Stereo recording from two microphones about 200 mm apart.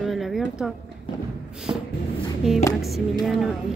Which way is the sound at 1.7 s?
20° right (ahead or behind).